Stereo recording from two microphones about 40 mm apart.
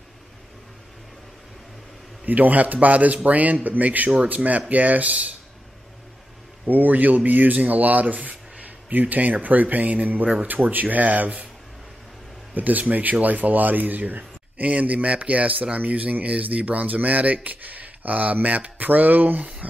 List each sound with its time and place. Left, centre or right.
2.2 s speech: right
6.6 s speech: right
10.2 s speech: right
10.5 s speech: right
12.5 s speech: right